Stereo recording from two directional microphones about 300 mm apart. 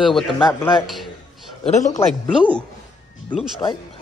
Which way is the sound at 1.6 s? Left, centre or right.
Left.